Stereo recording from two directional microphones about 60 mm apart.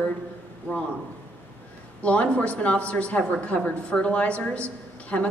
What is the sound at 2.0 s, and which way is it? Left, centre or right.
A woman's voice, left.